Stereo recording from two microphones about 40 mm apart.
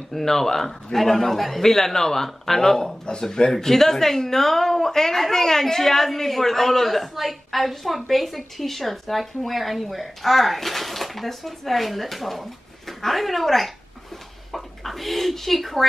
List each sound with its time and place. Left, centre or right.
0.1 s a man's voice: centre
3.1 s speech: left
3.5 s speech: centre